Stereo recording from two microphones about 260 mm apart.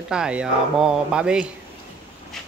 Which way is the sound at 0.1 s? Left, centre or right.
Centre.